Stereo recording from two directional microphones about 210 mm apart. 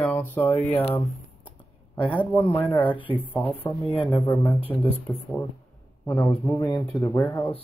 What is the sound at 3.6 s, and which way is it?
Speech, 10° left (ahead or behind).